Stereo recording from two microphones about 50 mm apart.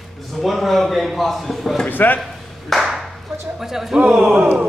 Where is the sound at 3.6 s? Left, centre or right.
Centre.